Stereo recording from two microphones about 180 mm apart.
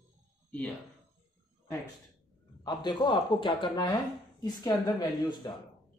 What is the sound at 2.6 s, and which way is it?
Speech, 25° left (ahead or behind).